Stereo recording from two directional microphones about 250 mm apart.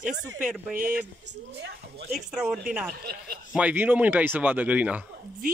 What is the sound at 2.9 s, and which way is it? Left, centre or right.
Speech, right.